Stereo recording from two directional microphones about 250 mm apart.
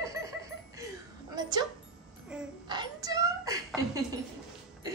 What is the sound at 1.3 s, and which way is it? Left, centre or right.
Speech, centre.